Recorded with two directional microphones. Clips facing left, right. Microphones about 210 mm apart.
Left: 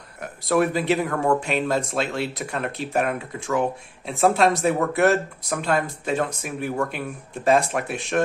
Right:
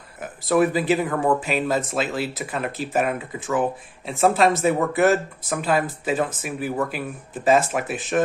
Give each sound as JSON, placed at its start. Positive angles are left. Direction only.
{"t": 0.2, "sound": "speech", "side_deg": 0}